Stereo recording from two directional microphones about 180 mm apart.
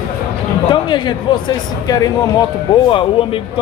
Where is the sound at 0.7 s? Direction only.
25° left (ahead or behind).